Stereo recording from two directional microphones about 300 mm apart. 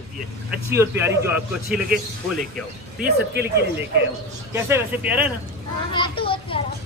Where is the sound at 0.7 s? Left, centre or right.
Centre.